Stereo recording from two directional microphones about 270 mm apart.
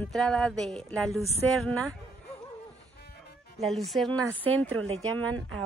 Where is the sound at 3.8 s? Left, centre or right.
Centre.